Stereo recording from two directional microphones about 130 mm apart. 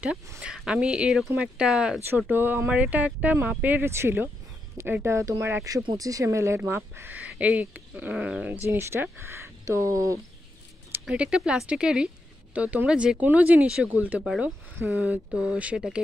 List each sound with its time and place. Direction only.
0.4 s speech: 5° right (ahead or behind)
8.6 s speech: 20° right (ahead or behind)
10.9 s speech: 5° right (ahead or behind)